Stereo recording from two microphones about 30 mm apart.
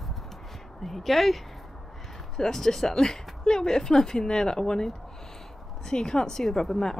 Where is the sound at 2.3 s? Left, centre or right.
Centre.